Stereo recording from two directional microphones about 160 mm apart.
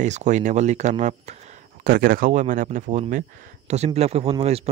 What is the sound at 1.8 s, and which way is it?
Speech, 65° right (ahead or behind).